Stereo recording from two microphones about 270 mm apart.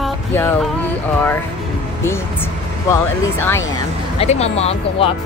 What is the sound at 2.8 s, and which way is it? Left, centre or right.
Speech, centre.